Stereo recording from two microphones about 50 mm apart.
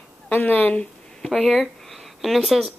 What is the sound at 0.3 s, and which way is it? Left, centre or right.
Speech, left.